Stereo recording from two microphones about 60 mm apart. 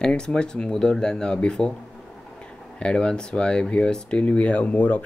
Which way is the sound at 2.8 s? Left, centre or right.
Centre.